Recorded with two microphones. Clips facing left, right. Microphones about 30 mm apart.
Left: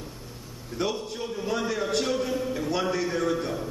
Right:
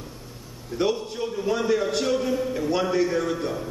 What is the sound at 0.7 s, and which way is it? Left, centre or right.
A man's voice, centre.